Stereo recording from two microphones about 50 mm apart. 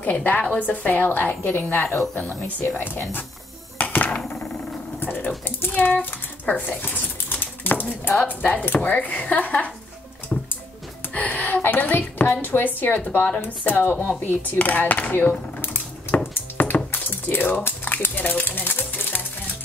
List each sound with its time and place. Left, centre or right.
0.0 s speech: left
3.7 s a sound: left
5.0 s dog: left
5.6 s a sound: left
5.9 s typewriter: left
8.2 s speech: left
10.3 s music: centre
11.1 s speech: left
16.3 s a sound: left
17.6 s music: left